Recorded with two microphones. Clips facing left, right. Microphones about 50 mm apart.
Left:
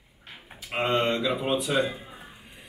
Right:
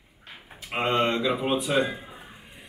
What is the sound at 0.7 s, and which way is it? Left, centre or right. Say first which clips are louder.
Speech: right 1 dB; centre.